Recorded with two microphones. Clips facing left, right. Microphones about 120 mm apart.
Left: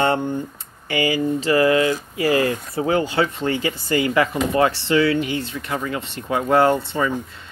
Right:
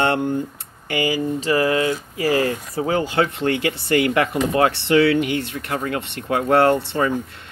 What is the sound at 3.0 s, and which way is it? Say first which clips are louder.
Speech: right 1 dB; 55° right (ahead or behind).